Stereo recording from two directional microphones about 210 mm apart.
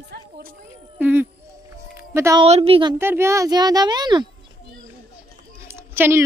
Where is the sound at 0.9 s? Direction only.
10° right (ahead or behind).